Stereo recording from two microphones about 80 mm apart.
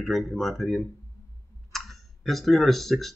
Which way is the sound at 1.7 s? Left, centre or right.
Centre.